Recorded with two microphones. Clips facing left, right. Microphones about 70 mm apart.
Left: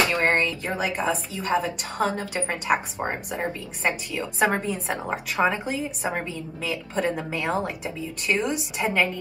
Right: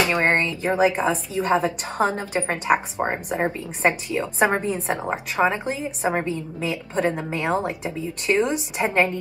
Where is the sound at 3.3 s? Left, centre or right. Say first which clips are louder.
Right 5 dB; right.